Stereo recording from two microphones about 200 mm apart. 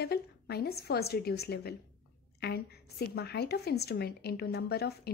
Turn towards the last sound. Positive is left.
turn(degrees=55)  # may be behind; listen again after turning